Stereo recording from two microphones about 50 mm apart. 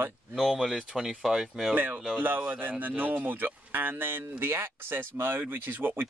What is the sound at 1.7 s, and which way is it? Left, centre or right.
Speech, right.